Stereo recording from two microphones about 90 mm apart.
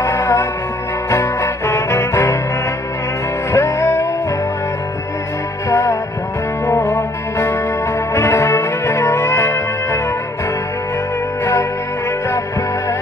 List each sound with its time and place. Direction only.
0.0 s music: 35° left (ahead or behind)
3.5 s music: 25° left (ahead or behind)
8.1 s music: 30° left (ahead or behind)